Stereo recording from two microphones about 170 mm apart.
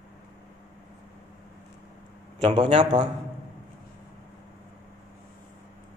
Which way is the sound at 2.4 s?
30° right (ahead or behind).